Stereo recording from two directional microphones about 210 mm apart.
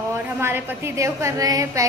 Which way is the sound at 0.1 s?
10° right (ahead or behind).